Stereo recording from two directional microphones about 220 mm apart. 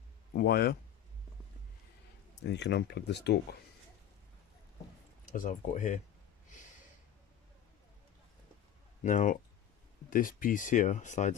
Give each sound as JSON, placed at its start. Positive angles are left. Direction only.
{"t": 0.3, "sound": "speech", "side_deg": 45}
{"t": 2.4, "sound": "speech", "side_deg": 50}
{"t": 5.2, "sound": "speech", "side_deg": 35}
{"t": 9.0, "sound": "speech", "side_deg": 35}